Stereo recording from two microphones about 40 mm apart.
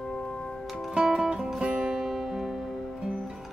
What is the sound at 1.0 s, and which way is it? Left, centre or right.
Music, centre.